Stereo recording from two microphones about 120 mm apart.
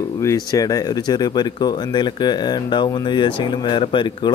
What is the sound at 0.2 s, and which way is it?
Speech, 30° left (ahead or behind).